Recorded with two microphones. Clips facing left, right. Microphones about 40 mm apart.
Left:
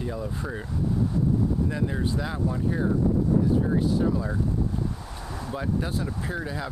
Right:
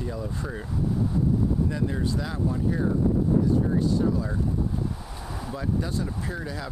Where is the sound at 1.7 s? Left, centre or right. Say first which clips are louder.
Even; centre.